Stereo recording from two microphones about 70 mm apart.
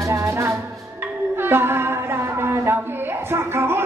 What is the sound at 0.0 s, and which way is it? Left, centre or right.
Music, right.